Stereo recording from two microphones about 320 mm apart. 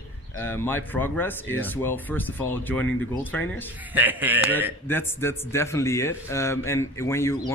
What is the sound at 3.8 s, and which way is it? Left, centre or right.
Speech, centre.